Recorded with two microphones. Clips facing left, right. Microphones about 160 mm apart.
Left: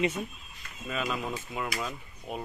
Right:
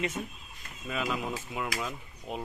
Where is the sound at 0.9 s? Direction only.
10° right (ahead or behind).